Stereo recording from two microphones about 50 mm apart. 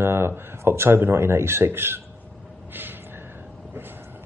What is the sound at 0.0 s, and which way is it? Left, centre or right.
Speech, right.